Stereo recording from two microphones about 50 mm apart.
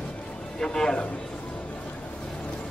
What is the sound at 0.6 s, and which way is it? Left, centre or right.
Speech, centre.